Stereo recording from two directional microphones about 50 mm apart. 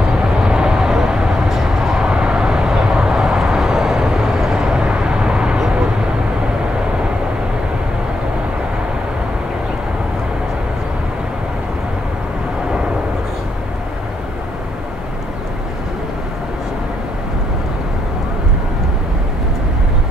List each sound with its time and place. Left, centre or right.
0.0 s vehicle: centre